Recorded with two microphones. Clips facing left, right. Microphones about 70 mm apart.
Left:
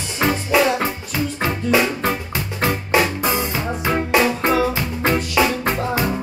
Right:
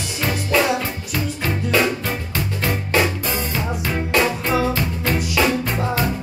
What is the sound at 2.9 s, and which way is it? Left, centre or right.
Music, centre.